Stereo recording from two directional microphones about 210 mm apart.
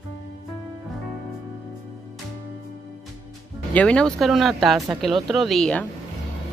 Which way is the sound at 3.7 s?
5° left (ahead or behind).